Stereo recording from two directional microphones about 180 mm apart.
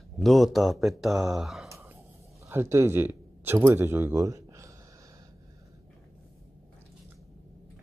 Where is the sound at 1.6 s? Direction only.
15° right (ahead or behind).